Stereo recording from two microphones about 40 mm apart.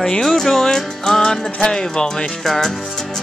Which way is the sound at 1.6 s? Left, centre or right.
Centre.